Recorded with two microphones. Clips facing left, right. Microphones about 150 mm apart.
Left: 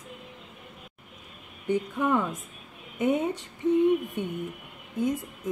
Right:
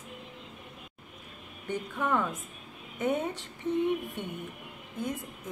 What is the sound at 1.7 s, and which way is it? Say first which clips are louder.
A woman's voice: left 5 dB; 15° left (ahead or behind).